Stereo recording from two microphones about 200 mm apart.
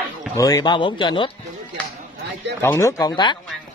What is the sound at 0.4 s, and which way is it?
Speech, 20° left (ahead or behind).